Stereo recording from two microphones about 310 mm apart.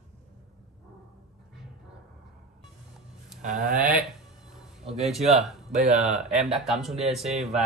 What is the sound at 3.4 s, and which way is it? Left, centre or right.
Speech, right.